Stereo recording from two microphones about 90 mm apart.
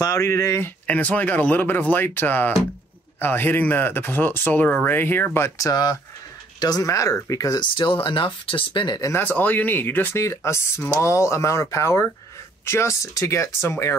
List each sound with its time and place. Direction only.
0.0 s speech: 35° left (ahead or behind)
0.8 s speech: 15° left (ahead or behind)
5.6 s speech: 45° left (ahead or behind)
7.7 s speech: 65° left (ahead or behind)
9.1 s speech: 20° left (ahead or behind)